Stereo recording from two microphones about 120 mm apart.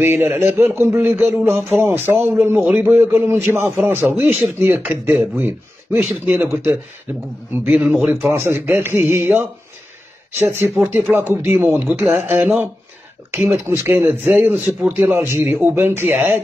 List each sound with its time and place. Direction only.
0.0 s a man's voice: 15° right (ahead or behind)
7.5 s a man's voice: 10° right (ahead or behind)
8.5 s a man's voice: 20° right (ahead or behind)